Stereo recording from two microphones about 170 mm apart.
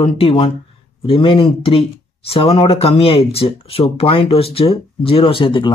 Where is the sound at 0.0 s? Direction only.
35° left (ahead or behind).